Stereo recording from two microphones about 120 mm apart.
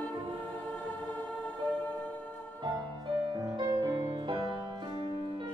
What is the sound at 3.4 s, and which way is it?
Music, 35° right (ahead or behind).